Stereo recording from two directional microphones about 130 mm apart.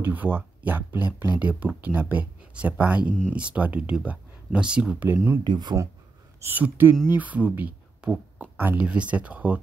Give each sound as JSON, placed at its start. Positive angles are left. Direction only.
{"t": 0.0, "sound": "speech", "side_deg": -15}
{"t": 5.4, "sound": "speech", "side_deg": -35}
{"t": 6.4, "sound": "speech", "side_deg": -15}